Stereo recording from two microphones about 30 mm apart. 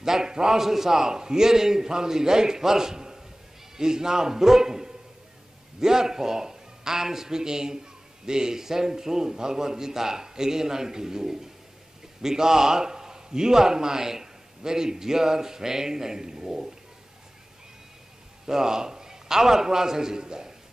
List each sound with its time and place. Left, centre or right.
0.0 s a man's voice: centre
0.6 s a man's voice: centre
18.5 s a man's voice: centre